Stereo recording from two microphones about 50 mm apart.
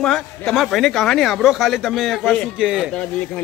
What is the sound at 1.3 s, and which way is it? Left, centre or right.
Speech, centre.